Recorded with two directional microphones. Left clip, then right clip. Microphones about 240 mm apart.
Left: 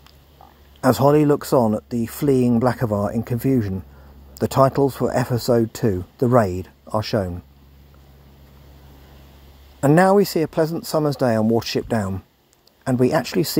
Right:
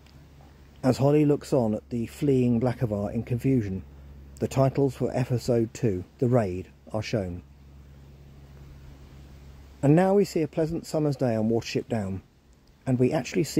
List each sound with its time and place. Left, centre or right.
0.7 s speech: centre
9.8 s speech: centre